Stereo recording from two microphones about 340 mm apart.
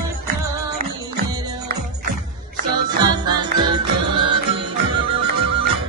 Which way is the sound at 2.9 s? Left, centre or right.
Centre.